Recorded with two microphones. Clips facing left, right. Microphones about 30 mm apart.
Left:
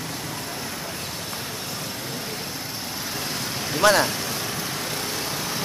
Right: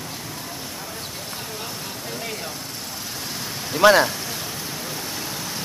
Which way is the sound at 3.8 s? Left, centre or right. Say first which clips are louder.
Right 4 dB; centre.